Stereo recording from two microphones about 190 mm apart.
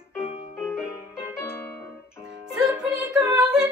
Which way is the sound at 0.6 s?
5° right (ahead or behind).